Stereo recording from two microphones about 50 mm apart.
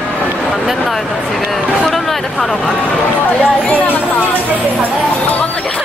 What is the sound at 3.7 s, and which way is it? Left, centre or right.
Speech, left.